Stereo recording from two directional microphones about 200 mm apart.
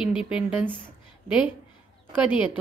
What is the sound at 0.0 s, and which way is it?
Speech, 5° right (ahead or behind).